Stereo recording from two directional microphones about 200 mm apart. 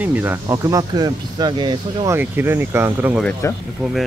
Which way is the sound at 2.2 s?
10° right (ahead or behind).